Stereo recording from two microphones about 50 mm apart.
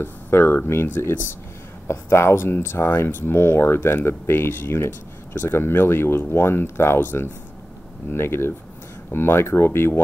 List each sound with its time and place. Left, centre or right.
0.0 s speech: left
1.9 s speech: left